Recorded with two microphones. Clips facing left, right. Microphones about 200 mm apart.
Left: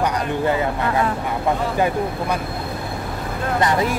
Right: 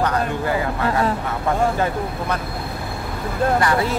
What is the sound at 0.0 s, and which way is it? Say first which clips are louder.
Speech: left 1 dB; 20° left (ahead or behind).